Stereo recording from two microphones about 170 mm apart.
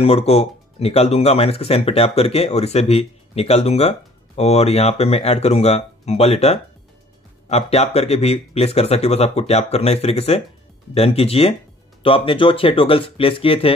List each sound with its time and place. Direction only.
0.0 s speech: 35° left (ahead or behind)